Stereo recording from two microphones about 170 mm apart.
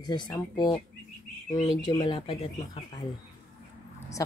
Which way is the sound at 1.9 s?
25° left (ahead or behind).